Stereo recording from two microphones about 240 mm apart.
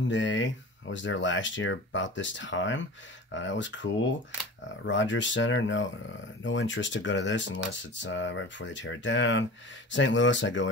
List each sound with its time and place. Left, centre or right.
0.1 s speech: left